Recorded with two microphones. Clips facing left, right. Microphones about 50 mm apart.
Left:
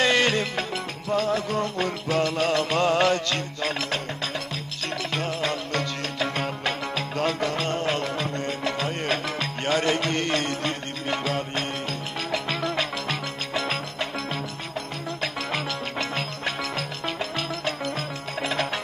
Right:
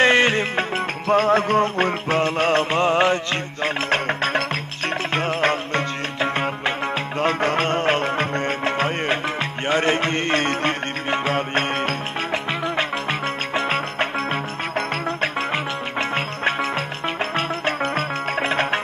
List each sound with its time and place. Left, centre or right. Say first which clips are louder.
0.0 s music: right 5 dB; right
1.0 s music: right 7 dB; right
3.9 s music: right 9 dB; right
15.5 s music: right 4 dB; right